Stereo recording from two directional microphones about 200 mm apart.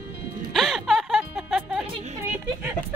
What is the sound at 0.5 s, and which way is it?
Music, centre (ahead or behind).